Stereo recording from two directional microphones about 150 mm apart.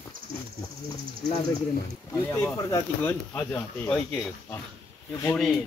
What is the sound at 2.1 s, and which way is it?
Speech, 15° left (ahead or behind).